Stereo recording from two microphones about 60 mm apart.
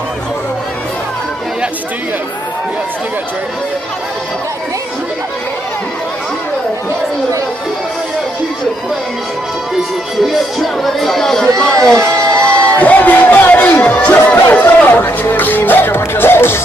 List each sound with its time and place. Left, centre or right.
10.2 s speech: centre
12.7 s speech: left
15.0 s music: left